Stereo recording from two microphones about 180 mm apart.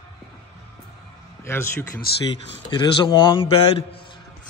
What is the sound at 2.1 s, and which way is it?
Speech, 60° left (ahead or behind).